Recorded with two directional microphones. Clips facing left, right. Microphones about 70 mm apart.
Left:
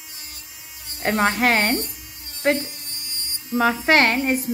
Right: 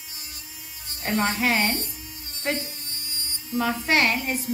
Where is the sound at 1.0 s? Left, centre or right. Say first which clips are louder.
Left 5 dB; left.